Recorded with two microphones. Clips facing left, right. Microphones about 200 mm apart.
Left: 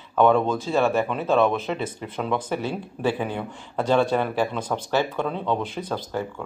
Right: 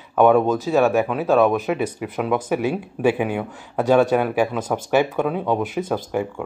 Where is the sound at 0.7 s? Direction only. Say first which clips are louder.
Right 4 dB; 15° right (ahead or behind).